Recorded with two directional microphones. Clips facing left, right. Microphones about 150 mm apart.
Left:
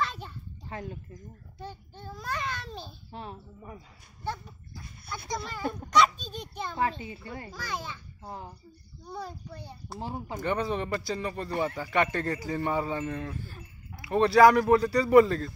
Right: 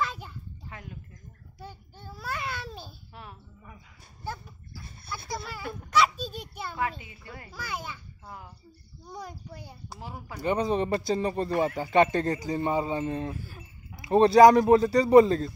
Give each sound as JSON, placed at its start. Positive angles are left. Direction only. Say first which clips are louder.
{"t": 0.0, "sound": "children playing", "louder": "right 1 dB", "side_deg": -10}
{"t": 0.7, "sound": "speech", "louder": "left 8 dB", "side_deg": 35}
{"t": 1.6, "sound": "a child's voice", "louder": "left 3 dB", "side_deg": -5}
{"t": 3.1, "sound": "speech", "louder": "left 6 dB", "side_deg": 30}
{"t": 5.3, "sound": "a child's voice", "louder": "left 4 dB", "side_deg": -5}
{"t": 6.7, "sound": "speech", "louder": "left 2 dB", "side_deg": 30}
{"t": 7.5, "sound": "a child's voice", "louder": "right 2 dB", "side_deg": -10}
{"t": 8.2, "sound": "speech", "louder": "left 4 dB", "side_deg": 30}
{"t": 9.5, "sound": "a child's voice", "louder": "left 1 dB", "side_deg": -10}
{"t": 9.9, "sound": "speech", "louder": "left 6 dB", "side_deg": 30}
{"t": 10.4, "sound": "speech", "louder": "right 4 dB", "side_deg": -20}
{"t": 13.3, "sound": "a sound", "louder": "right 1 dB", "side_deg": -10}
{"t": 14.0, "sound": "speech", "louder": "right 3 dB", "side_deg": -25}